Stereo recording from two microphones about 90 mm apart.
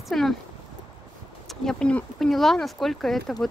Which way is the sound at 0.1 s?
Centre (ahead or behind).